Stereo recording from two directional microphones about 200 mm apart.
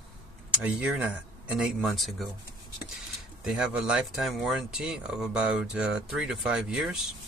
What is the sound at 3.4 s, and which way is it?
Speech, centre (ahead or behind).